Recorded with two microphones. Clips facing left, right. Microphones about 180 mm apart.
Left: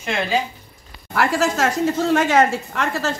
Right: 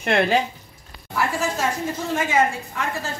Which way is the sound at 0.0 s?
60° right (ahead or behind).